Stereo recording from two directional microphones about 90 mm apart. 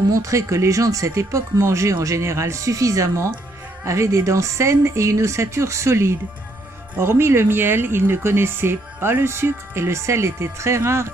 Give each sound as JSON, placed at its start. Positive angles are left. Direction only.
{"t": 0.1, "sound": "speech", "side_deg": -35}